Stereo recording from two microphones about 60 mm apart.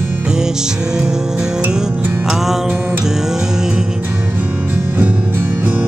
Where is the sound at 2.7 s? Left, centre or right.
Centre.